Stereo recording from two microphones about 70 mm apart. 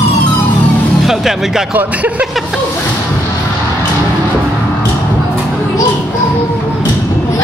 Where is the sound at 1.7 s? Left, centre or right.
Right.